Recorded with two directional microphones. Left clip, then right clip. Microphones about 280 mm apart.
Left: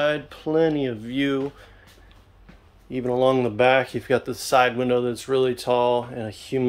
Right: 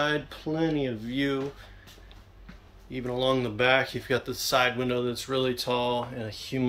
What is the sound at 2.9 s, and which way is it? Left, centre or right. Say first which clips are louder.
Speech: left 7 dB; centre.